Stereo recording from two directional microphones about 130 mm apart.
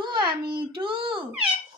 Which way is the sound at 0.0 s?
40° right (ahead or behind).